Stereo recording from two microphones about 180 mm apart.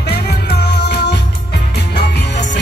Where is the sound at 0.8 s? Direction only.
65° left (ahead or behind).